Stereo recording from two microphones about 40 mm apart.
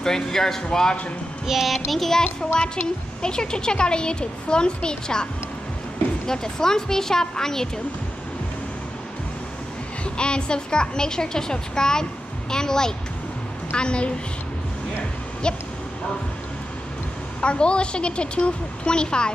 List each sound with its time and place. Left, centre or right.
0.0 s a woman's voice: centre
1.5 s child singing: centre
1.9 s a woman's voice: centre
2.6 s a woman's voice: centre
10.0 s a woman's voice: left
15.4 s a woman's voice: left
17.4 s a woman's voice: left